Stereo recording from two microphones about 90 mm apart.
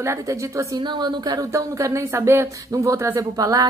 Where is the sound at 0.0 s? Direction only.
35° right (ahead or behind).